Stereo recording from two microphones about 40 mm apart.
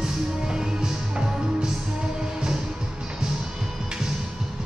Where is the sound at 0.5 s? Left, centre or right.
Centre.